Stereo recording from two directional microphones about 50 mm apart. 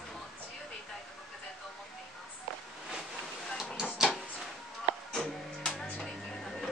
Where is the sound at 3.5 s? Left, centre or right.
Centre.